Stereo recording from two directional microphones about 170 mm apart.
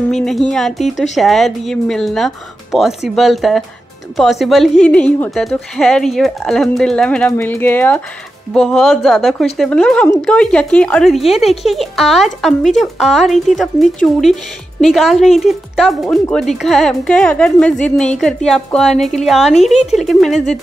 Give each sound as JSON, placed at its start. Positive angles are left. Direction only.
{"t": 0.1, "sound": "speech", "side_deg": 0}
{"t": 19.7, "sound": "speech", "side_deg": 40}
{"t": 20.0, "sound": "speech", "side_deg": 0}